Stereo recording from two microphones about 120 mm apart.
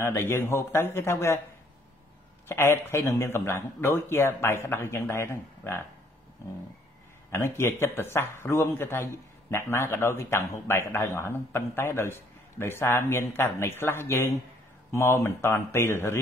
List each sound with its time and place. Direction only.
0.0 s a man's voice: 20° left (ahead or behind)
2.4 s a man's voice: 20° left (ahead or behind)
7.2 s a man's voice: 20° left (ahead or behind)